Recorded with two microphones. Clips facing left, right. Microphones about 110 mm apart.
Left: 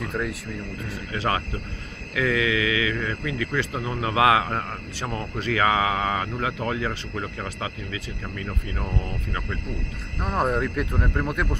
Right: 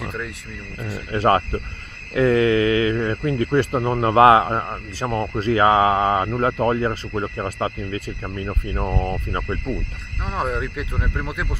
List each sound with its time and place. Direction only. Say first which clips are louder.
0.0 s speech: left 1 dB; centre (ahead or behind)
1.1 s speech: right 9 dB; 50° right (ahead or behind)
8.5 s speech: right 8 dB; 35° right (ahead or behind)
10.2 s speech: left 1 dB; centre (ahead or behind)